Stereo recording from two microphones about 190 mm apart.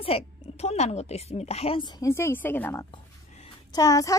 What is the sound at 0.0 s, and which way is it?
A woman's voice, 30° left (ahead or behind).